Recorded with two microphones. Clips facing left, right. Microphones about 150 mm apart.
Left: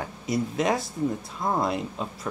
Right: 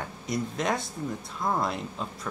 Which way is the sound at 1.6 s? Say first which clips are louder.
Left 4 dB; centre (ahead or behind).